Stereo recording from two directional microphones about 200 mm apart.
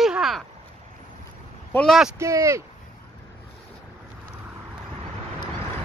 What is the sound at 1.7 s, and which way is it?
Speech, 5° left (ahead or behind).